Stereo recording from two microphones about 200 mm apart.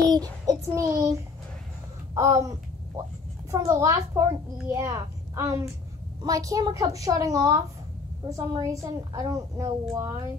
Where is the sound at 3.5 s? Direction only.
15° right (ahead or behind).